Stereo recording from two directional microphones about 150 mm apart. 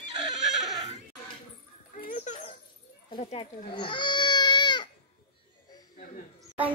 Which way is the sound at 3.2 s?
40° left (ahead or behind).